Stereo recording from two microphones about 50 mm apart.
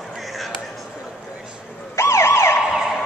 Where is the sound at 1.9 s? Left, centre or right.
Left.